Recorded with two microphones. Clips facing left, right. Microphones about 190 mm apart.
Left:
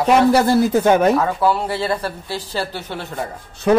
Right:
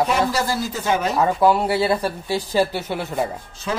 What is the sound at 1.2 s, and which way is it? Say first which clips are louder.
Speech: right 1 dB; 15° right (ahead or behind).